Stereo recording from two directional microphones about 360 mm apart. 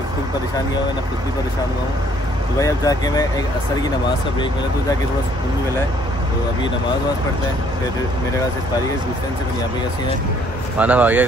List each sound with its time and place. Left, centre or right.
2.6 s speech: centre
10.8 s speech: centre